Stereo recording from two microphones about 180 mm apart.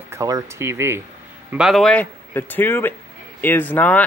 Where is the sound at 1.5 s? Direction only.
5° right (ahead or behind).